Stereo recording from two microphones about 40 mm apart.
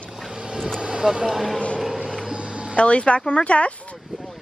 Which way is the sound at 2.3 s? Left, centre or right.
Right.